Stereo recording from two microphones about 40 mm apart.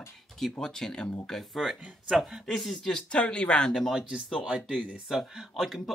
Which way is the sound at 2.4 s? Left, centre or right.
Centre.